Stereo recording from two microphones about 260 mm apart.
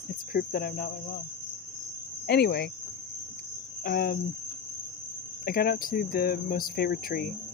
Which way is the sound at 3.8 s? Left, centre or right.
Left.